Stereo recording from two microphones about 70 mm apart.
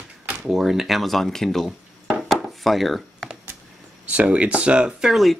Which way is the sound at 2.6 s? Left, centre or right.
Centre.